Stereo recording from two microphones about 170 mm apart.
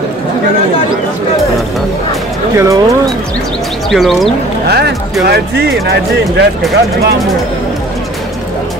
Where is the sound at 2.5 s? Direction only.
20° right (ahead or behind).